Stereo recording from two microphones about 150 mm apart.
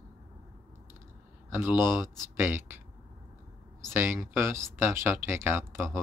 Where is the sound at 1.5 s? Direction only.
15° right (ahead or behind).